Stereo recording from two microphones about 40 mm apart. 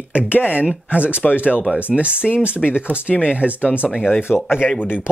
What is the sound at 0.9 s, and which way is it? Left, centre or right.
Speech, right.